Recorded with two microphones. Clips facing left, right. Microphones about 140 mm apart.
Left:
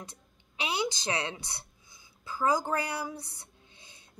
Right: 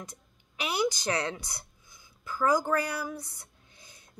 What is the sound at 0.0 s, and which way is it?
Speech, 25° left (ahead or behind).